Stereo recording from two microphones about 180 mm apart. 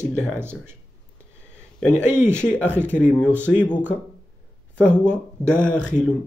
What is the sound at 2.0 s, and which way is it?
Speech, 15° right (ahead or behind).